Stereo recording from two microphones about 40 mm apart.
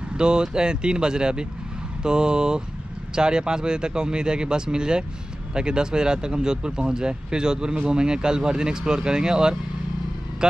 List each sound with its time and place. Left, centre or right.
0.2 s speech: centre